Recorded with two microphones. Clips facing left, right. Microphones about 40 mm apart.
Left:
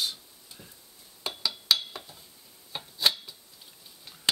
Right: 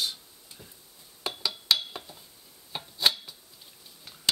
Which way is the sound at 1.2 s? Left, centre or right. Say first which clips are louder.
Even; centre.